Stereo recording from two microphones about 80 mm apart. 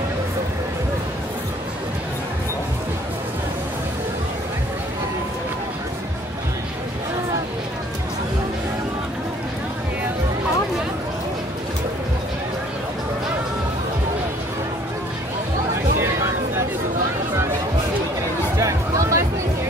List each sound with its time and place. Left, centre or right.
18.6 s music: right